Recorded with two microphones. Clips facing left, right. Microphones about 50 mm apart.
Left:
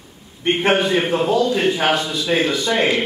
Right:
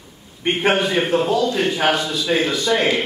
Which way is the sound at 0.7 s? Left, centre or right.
Centre.